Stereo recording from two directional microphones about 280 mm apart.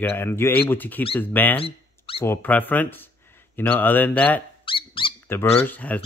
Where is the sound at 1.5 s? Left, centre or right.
Centre.